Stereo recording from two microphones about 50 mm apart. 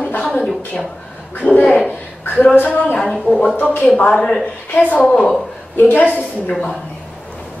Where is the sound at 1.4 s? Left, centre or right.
Left.